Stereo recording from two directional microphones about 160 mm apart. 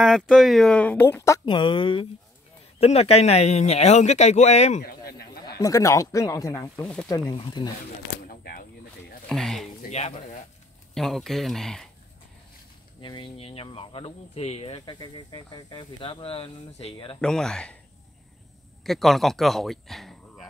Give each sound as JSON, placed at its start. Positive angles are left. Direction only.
{"t": 0.0, "sound": "speech", "side_deg": 0}
{"t": 1.4, "sound": "a man's voice", "side_deg": 30}
{"t": 4.8, "sound": "a sound", "side_deg": 70}
{"t": 5.6, "sound": "speech", "side_deg": 20}
{"t": 7.3, "sound": "speech", "side_deg": 30}
{"t": 8.3, "sound": "a sound", "side_deg": 65}
{"t": 9.3, "sound": "speech", "side_deg": 0}
{"t": 9.8, "sound": "a man's voice", "side_deg": 45}
{"t": 11.0, "sound": "speech", "side_deg": 0}
{"t": 13.0, "sound": "speech", "side_deg": 30}
{"t": 17.2, "sound": "speech", "side_deg": 5}
{"t": 18.9, "sound": "speech", "side_deg": 0}